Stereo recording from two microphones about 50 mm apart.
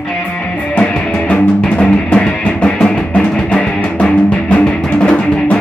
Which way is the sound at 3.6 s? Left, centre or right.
Left.